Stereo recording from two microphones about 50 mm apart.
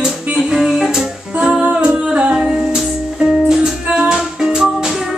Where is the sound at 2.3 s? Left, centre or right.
Centre.